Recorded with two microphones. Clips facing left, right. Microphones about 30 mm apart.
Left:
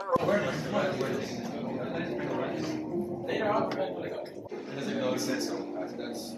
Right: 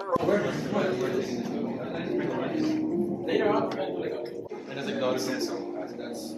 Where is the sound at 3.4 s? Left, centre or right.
Centre.